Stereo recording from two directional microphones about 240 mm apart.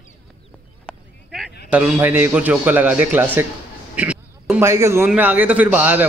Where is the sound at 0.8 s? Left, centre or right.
Centre.